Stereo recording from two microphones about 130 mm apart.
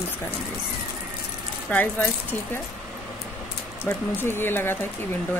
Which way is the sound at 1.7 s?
15° left (ahead or behind).